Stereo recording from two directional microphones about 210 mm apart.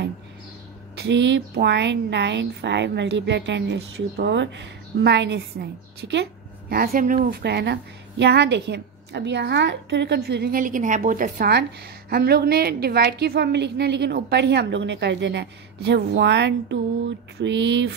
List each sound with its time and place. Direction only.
0.9 s a woman's voice: 55° right (ahead or behind)